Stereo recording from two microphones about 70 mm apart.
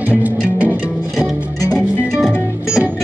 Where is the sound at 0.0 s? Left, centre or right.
Right.